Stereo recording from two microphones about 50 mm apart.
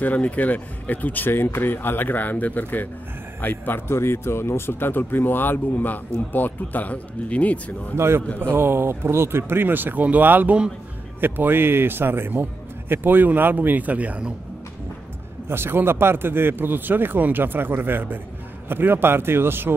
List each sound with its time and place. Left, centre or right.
0.0 s speech: left
1.3 s speech: left
7.9 s a man's voice: right
8.4 s speech: right
15.4 s speech: right